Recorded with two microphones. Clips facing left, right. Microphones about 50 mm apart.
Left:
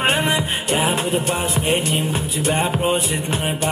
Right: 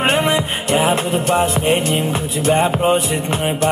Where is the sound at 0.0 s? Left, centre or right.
Right.